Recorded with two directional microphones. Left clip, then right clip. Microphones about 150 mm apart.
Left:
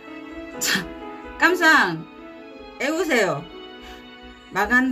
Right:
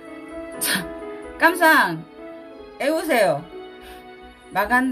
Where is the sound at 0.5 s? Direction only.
5° right (ahead or behind).